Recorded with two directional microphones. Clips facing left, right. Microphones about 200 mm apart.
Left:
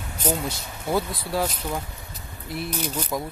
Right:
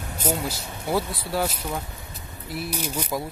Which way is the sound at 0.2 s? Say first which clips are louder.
Left 1 dB; 10° right (ahead or behind).